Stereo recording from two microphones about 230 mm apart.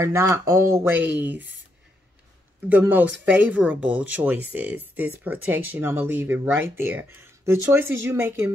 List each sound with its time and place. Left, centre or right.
0.0 s speech: centre
2.7 s speech: centre